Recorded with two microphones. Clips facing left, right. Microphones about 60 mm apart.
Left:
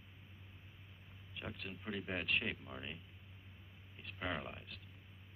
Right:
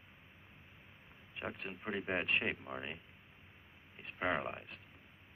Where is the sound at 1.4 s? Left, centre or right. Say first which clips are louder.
Right 4 dB; right.